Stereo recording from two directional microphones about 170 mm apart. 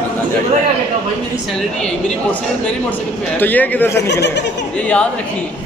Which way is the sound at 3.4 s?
10° left (ahead or behind).